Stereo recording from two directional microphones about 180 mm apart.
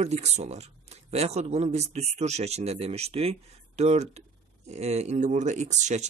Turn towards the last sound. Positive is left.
turn(degrees=-40)  # may be behind; listen again after turning